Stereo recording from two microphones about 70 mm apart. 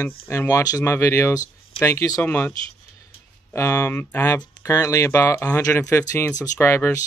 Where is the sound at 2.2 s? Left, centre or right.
Left.